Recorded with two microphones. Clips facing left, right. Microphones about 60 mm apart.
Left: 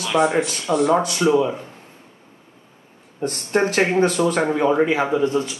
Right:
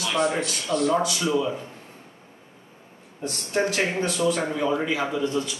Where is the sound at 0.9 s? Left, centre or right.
Left.